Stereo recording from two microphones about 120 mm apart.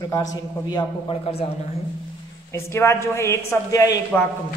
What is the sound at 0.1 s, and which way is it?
A man's voice, 30° left (ahead or behind).